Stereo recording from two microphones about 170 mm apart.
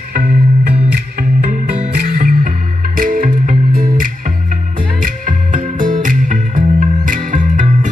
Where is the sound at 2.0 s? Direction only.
60° right (ahead or behind).